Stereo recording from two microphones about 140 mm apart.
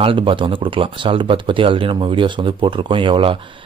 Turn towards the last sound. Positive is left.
turn(degrees=-40)  # may be behind; listen again after turning